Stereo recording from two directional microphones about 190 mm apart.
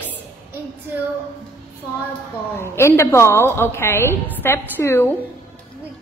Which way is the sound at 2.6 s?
15° left (ahead or behind).